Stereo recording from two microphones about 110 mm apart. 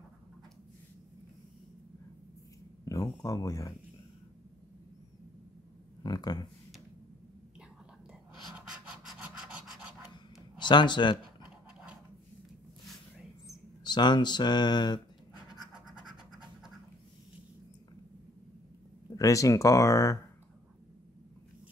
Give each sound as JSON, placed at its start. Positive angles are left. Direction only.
{"t": 2.8, "sound": "speech", "side_deg": 30}
{"t": 6.0, "sound": "speech", "side_deg": 35}
{"t": 8.5, "sound": "scratch", "side_deg": -5}
{"t": 10.6, "sound": "speech", "side_deg": 45}
{"t": 13.8, "sound": "speech", "side_deg": 40}
{"t": 15.5, "sound": "scratch", "side_deg": -5}
{"t": 19.0, "sound": "speech", "side_deg": 30}